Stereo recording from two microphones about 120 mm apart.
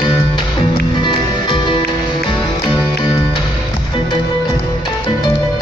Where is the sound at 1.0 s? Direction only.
40° left (ahead or behind).